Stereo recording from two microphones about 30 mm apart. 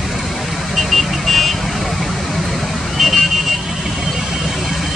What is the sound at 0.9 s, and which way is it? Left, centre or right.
Vehicle, centre.